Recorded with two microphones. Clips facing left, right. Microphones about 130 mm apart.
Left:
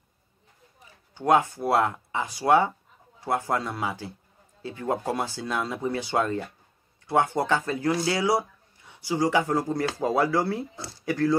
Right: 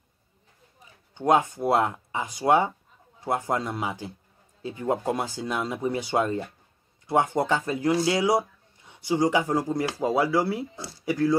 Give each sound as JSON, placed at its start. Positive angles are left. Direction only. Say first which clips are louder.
{"t": 1.1, "sound": "speech", "louder": "even", "side_deg": -20}